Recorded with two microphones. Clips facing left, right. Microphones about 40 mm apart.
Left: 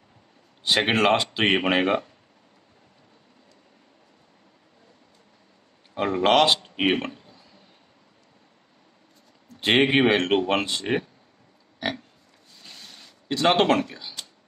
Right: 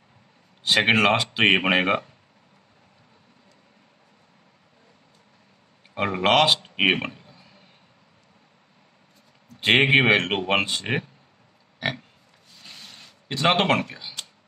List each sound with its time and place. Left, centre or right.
0.7 s speech: centre
5.9 s speech: centre
6.6 s speech: right
7.1 s a sound: centre
9.6 s speech: centre
11.8 s speech: centre
12.6 s a sound: centre